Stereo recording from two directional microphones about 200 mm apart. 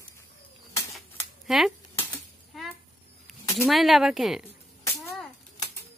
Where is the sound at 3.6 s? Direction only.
Centre (ahead or behind).